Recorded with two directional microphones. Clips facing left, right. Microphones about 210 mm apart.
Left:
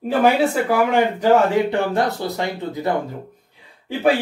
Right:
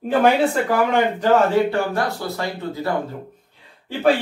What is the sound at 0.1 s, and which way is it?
Speech, 5° left (ahead or behind).